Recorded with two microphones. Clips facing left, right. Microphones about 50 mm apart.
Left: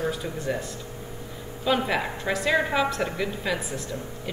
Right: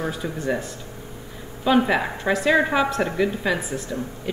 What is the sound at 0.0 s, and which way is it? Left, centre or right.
Speech, right.